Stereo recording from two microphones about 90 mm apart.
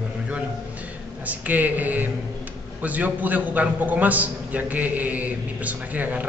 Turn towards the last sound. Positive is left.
turn(degrees=-15)  # may be behind; listen again after turning